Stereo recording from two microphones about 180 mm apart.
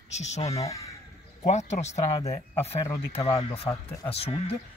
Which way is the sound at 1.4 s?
40° left (ahead or behind).